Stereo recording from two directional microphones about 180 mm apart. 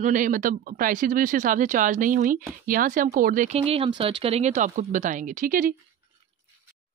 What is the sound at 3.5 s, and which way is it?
Speech, 35° right (ahead or behind).